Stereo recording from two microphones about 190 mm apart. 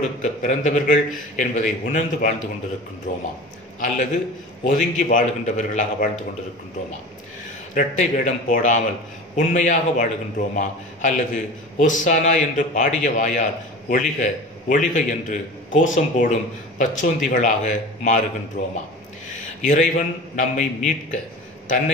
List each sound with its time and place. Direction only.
0.0 s a man's voice: 40° left (ahead or behind)
4.6 s a man's voice: 40° left (ahead or behind)
7.7 s a man's voice: 40° left (ahead or behind)